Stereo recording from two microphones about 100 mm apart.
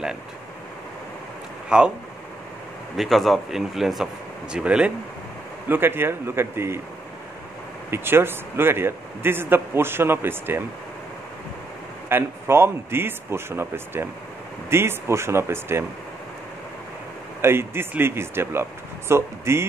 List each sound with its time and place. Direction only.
1.7 s speech: 10° right (ahead or behind)
3.0 s speech: centre (ahead or behind)
5.7 s a man's voice: 20° right (ahead or behind)
7.9 s a man's voice: 25° right (ahead or behind)
12.1 s a man's voice: 25° right (ahead or behind)
17.4 s a man's voice: 25° right (ahead or behind)